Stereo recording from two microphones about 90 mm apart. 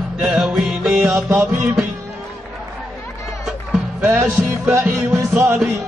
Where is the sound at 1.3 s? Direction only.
20° right (ahead or behind).